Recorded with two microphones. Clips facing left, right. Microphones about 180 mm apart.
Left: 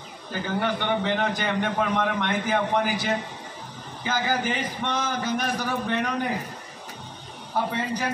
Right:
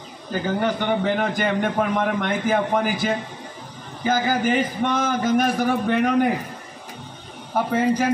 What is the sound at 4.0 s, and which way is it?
A man's voice, 45° right (ahead or behind).